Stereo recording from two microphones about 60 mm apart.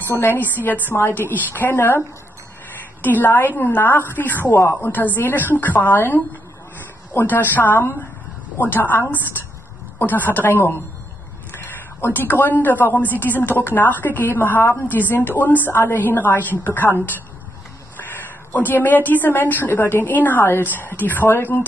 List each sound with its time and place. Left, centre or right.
0.2 s a woman's voice: left
9.9 s a woman's voice: left
18.5 s a woman's voice: left